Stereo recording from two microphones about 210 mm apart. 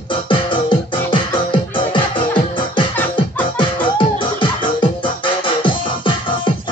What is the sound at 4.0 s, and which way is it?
Music, 25° left (ahead or behind).